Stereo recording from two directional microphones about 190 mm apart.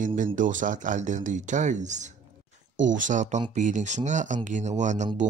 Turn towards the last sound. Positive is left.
turn(degrees=-40)  # may be behind; listen again after turning